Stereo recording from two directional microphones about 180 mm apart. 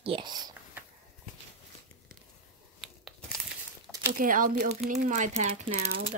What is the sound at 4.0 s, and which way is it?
Speech, 50° right (ahead or behind).